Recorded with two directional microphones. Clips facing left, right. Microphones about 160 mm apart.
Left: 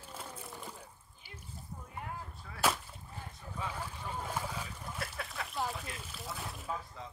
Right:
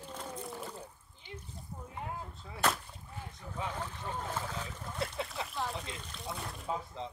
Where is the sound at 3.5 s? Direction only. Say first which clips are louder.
Right 2 dB; 15° right (ahead or behind).